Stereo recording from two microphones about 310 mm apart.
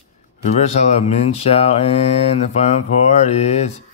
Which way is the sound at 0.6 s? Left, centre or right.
Left.